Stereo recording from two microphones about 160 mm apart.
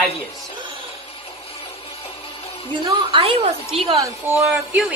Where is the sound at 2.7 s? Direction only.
30° right (ahead or behind).